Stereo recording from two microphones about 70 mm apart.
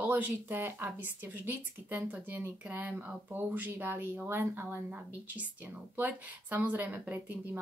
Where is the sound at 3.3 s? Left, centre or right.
Right.